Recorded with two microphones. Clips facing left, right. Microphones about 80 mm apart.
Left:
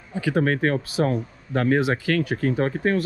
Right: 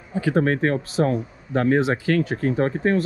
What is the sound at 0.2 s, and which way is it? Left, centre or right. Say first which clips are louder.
Speech: right 2 dB; right.